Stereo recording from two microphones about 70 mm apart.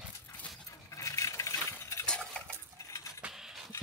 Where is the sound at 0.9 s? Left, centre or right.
Left.